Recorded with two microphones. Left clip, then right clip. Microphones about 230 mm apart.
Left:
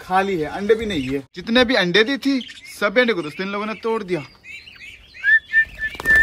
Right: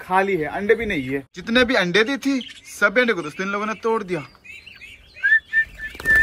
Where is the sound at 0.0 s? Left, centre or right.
Centre.